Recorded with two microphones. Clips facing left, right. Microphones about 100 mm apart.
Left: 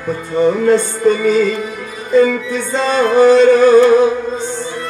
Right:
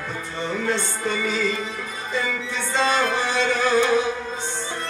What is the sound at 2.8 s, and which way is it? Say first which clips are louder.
Music: left 15 dB; 45° left (ahead or behind).